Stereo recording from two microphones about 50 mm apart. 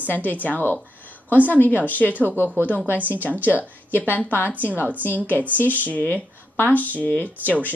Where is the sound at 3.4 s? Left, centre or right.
Left.